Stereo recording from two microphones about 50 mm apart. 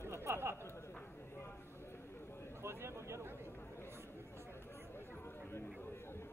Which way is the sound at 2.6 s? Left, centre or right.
Right.